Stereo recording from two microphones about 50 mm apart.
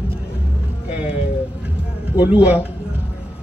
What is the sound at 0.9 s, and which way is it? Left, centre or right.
Speech, right.